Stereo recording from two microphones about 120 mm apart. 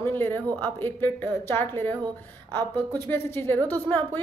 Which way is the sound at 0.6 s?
15° left (ahead or behind).